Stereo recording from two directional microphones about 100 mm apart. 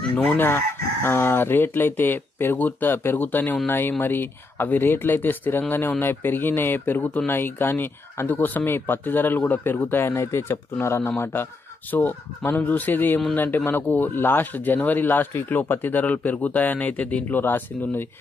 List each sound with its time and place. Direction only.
0.3 s speech: 20° left (ahead or behind)